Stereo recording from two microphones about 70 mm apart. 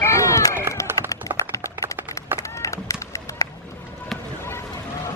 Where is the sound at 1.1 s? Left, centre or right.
Left.